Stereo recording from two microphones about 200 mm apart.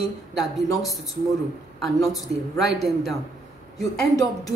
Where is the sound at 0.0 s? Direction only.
Centre (ahead or behind).